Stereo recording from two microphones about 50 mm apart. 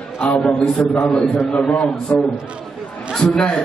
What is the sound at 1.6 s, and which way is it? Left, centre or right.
Speech, left.